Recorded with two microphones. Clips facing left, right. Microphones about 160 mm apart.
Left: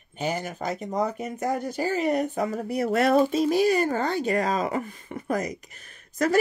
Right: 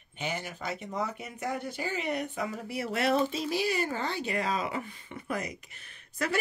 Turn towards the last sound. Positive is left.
turn(degrees=40)  # may be behind; listen again after turning